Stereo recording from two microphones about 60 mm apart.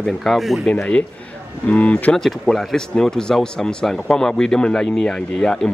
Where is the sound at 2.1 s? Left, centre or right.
Centre.